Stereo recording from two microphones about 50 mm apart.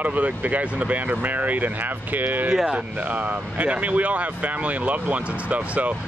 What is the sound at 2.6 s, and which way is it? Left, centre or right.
Speech, right.